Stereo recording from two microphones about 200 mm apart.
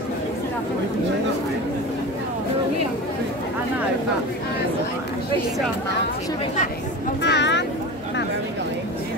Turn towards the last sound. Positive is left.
turn(degrees=60)  # may be behind; listen again after turning